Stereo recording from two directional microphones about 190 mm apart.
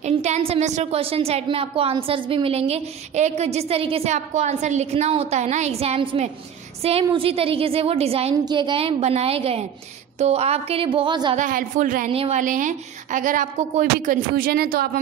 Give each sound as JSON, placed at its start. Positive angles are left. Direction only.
{"t": 0.0, "sound": "a woman's voice", "side_deg": -35}
{"t": 11.3, "sound": "a woman's voice", "side_deg": -40}
{"t": 12.1, "sound": "a woman's voice", "side_deg": -35}